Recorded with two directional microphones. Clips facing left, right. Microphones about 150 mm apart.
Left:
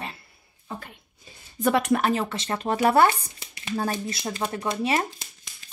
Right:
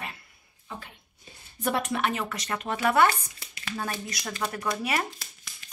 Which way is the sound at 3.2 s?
25° left (ahead or behind).